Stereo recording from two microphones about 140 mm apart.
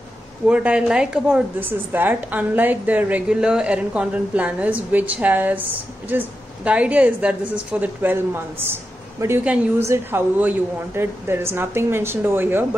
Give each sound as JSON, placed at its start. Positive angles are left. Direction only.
{"t": 0.5, "sound": "a woman's voice", "side_deg": -10}